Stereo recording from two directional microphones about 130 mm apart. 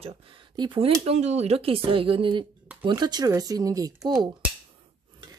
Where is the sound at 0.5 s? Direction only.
40° right (ahead or behind).